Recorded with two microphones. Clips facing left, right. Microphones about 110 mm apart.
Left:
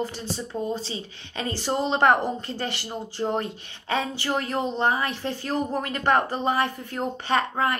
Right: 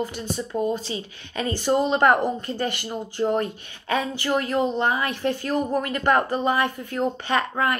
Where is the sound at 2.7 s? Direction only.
50° right (ahead or behind).